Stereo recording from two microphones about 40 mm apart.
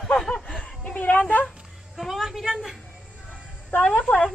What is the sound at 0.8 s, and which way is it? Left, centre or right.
Speech, left.